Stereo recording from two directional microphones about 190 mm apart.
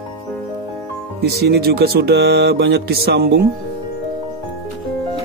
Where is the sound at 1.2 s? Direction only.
55° right (ahead or behind).